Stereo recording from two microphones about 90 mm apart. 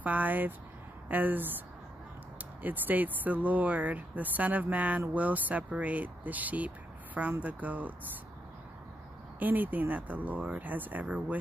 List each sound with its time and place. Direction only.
0.0 s speech: 20° right (ahead or behind)
2.6 s speech: 20° right (ahead or behind)
9.4 s speech: 20° right (ahead or behind)